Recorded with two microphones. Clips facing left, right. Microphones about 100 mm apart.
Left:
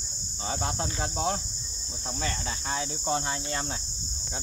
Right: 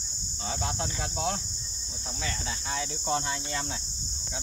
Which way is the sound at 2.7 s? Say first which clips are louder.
Left 1 dB; 35° left (ahead or behind).